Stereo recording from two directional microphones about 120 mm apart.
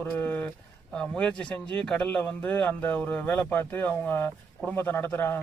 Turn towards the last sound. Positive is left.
turn(degrees=15)  # may be behind; listen again after turning